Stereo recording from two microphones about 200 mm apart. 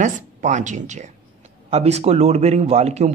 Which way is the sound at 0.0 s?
40° right (ahead or behind).